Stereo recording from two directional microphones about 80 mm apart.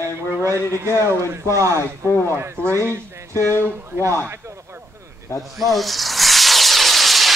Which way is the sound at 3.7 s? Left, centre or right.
Right.